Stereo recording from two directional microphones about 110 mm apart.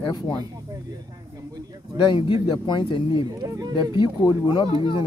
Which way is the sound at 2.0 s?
45° left (ahead or behind).